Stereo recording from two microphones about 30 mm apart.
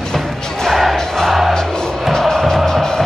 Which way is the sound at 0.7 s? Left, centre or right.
Centre.